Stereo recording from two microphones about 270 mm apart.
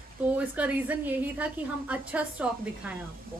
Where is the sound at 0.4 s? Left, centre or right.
Centre.